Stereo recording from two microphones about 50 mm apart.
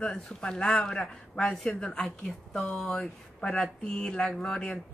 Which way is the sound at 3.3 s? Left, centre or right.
Centre.